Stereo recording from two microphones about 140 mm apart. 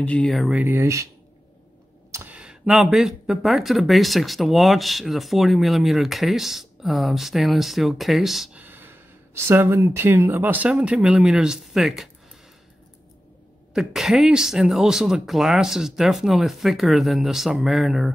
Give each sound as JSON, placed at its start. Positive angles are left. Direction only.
{"t": 0.0, "sound": "speech", "side_deg": 10}
{"t": 0.6, "sound": "speech", "side_deg": -15}
{"t": 2.0, "sound": "a sound", "side_deg": -20}
{"t": 2.3, "sound": "speech", "side_deg": -5}
{"t": 8.6, "sound": "speech", "side_deg": -15}
{"t": 13.7, "sound": "speech", "side_deg": -5}